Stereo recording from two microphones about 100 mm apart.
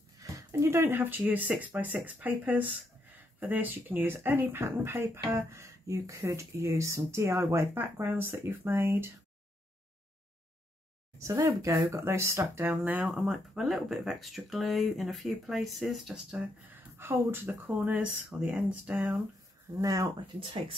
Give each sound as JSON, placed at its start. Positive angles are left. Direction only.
{"t": 0.2, "sound": "speech", "side_deg": -30}
{"t": 11.1, "sound": "speech", "side_deg": -30}
{"t": 12.8, "sound": "speech", "side_deg": -10}
{"t": 16.7, "sound": "speech", "side_deg": -20}
{"t": 19.8, "sound": "speech", "side_deg": -35}